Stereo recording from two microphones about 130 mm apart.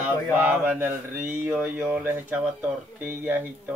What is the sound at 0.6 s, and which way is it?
Speech, 15° right (ahead or behind).